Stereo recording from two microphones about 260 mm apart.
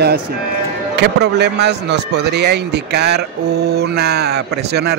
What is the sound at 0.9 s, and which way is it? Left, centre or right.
Speech, right.